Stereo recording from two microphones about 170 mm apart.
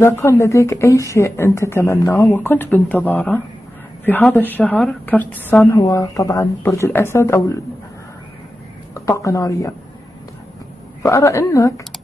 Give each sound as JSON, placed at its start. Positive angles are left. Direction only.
{"t": 0.0, "sound": "a woman's voice", "side_deg": 15}
{"t": 8.9, "sound": "speech", "side_deg": 20}
{"t": 11.0, "sound": "a woman's voice", "side_deg": 20}